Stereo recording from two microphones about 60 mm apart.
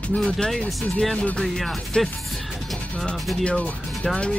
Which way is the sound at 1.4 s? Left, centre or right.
Centre.